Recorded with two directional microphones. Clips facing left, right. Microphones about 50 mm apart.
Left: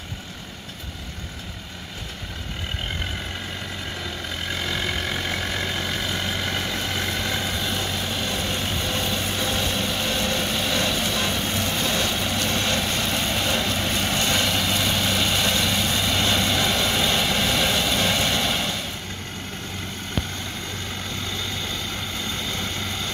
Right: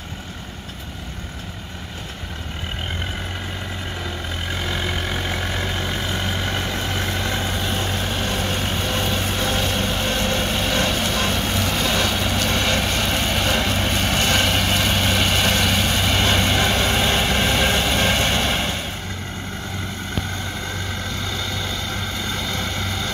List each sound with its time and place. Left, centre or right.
4.6 s vehicle: centre; by 11.5 s right
11.7 s vehicle: right
22.5 s vehicle: right